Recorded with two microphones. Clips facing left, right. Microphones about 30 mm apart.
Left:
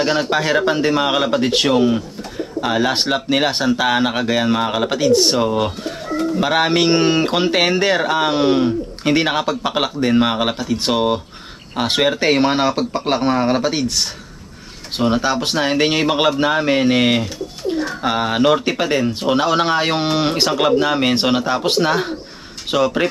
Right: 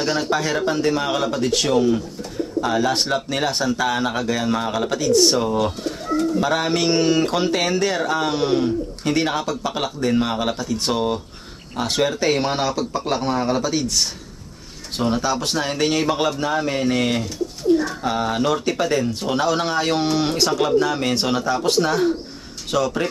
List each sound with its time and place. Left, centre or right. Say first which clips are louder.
0.0 s speech: left 4 dB; left